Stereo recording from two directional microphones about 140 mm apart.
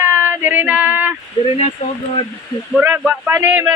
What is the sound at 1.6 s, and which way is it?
Speech, 50° left (ahead or behind).